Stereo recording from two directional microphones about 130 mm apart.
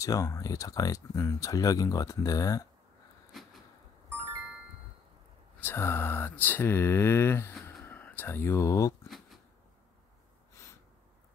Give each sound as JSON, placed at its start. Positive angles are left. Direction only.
{"t": 0.0, "sound": "speech", "side_deg": 25}
{"t": 3.3, "sound": "a sound", "side_deg": 0}
{"t": 5.6, "sound": "speech", "side_deg": 20}
{"t": 10.6, "sound": "gasp", "side_deg": 20}